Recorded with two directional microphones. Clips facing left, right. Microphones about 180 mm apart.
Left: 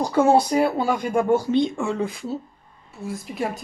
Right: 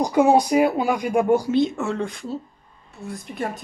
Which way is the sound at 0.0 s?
15° right (ahead or behind).